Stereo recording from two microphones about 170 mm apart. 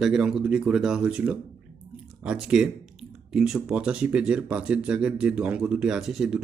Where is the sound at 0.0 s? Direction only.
5° right (ahead or behind).